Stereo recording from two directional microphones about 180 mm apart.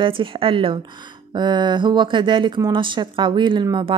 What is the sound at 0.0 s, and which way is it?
Speech, 30° right (ahead or behind).